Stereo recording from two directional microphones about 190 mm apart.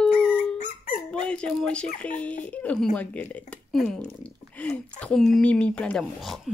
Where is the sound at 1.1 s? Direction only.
5° left (ahead or behind).